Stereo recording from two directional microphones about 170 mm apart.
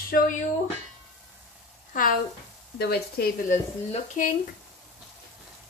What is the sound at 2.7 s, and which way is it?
Speech, 65° left (ahead or behind).